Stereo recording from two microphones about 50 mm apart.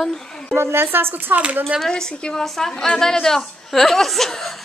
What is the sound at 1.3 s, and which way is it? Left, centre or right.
Speech, right.